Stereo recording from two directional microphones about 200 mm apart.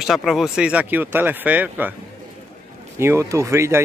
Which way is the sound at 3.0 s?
15° right (ahead or behind).